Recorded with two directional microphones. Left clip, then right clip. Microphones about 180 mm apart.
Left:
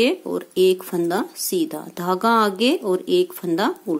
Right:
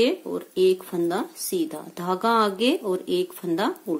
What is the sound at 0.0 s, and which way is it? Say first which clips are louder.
Speech: left 3 dB; 30° left (ahead or behind).